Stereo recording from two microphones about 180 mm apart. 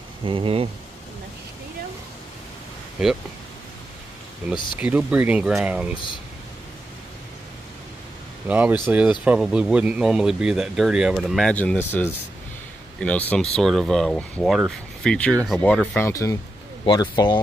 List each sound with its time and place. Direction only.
0.2 s speech: 30° right (ahead or behind)
4.7 s speech: 10° right (ahead or behind)
8.5 s speech: 10° right (ahead or behind)
16.0 s speech: 15° left (ahead or behind)